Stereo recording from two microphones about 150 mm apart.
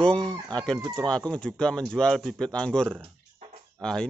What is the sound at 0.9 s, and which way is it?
Speech, 5° left (ahead or behind).